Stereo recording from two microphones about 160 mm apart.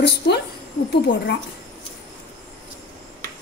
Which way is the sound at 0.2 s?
90° left.